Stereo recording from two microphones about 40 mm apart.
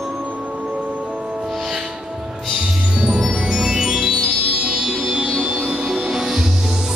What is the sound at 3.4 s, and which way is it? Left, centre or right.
Music, centre.